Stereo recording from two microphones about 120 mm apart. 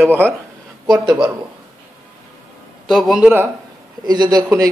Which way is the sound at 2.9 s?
Centre (ahead or behind).